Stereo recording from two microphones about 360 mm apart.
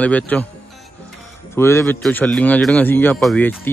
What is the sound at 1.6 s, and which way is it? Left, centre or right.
Speech, centre.